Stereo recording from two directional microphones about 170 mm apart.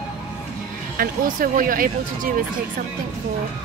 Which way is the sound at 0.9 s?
55° right (ahead or behind).